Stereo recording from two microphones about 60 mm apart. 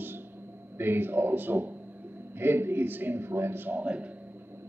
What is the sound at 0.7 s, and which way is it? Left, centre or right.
A man's voice, right.